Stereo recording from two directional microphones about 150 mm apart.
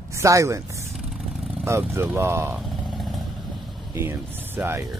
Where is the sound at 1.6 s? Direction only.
15° right (ahead or behind).